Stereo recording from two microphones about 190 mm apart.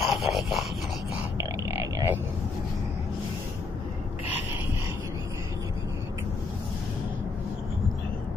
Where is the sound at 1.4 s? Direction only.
20° right (ahead or behind).